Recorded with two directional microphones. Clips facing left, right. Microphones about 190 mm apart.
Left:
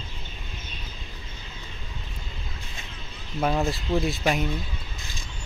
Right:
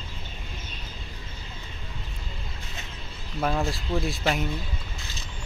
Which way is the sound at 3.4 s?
5° left (ahead or behind).